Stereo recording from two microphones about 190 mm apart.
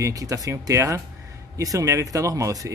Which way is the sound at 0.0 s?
15° right (ahead or behind).